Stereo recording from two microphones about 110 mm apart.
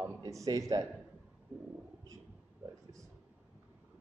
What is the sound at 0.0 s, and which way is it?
Speech, 30° right (ahead or behind).